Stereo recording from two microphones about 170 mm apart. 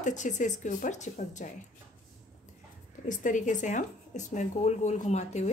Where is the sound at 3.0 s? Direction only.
50° left (ahead or behind).